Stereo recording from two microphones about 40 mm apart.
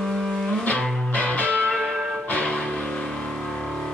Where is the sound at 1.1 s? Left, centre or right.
Left.